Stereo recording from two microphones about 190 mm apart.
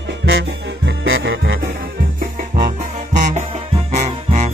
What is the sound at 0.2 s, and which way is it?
Music, 65° right (ahead or behind).